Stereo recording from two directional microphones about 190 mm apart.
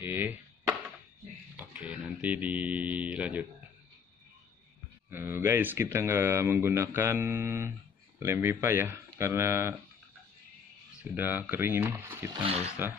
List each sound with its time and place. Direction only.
0.0 s chopping: 10° right (ahead or behind)
1.7 s speech: 5° right (ahead or behind)
5.1 s speech: 10° right (ahead or behind)
11.0 s speech: 10° right (ahead or behind)
12.4 s speech: 35° right (ahead or behind)